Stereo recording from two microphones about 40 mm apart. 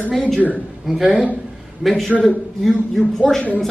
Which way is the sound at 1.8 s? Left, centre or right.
Centre.